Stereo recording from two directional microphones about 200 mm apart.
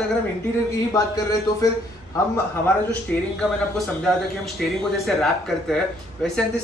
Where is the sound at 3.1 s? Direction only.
5° left (ahead or behind).